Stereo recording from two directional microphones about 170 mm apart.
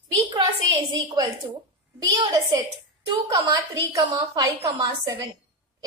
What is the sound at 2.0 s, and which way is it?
A woman's voice, 25° right (ahead or behind).